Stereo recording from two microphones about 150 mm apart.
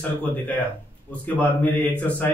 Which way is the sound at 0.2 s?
10° left (ahead or behind).